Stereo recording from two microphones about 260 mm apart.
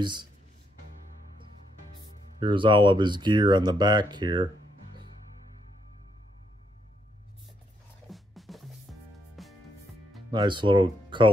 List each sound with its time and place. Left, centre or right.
0.0 s speech: centre
2.4 s speech: centre
8.1 s music: centre
10.3 s speech: centre